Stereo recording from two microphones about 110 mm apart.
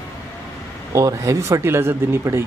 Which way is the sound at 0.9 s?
30° right (ahead or behind).